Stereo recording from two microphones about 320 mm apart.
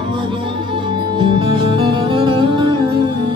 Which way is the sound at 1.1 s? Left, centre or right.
Centre.